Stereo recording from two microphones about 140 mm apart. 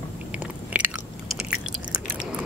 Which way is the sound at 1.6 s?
5° left (ahead or behind).